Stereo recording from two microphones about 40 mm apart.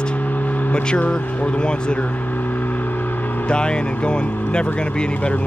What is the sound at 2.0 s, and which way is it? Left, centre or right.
Vehicle, left.